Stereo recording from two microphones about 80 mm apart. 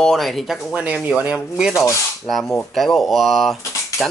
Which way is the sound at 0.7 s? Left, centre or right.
Centre.